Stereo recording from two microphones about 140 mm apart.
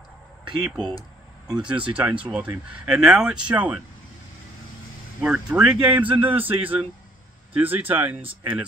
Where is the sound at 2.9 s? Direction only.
5° right (ahead or behind).